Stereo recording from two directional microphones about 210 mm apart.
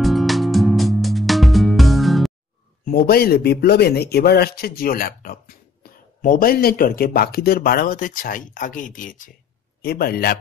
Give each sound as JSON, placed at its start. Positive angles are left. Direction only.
{"t": 0.0, "sound": "music", "side_deg": 0}
{"t": 2.8, "sound": "speech", "side_deg": 45}